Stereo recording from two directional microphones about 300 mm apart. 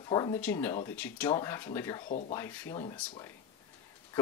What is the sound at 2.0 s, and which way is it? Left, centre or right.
Speech, left.